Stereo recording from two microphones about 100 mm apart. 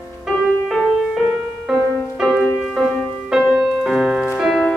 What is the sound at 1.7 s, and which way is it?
Music, 5° right (ahead or behind).